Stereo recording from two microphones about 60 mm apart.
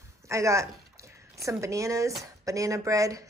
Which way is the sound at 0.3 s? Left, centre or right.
Right.